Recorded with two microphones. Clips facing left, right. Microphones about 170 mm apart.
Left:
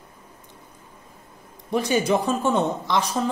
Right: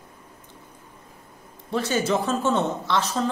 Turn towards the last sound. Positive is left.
turn(degrees=15)  # may be behind; listen again after turning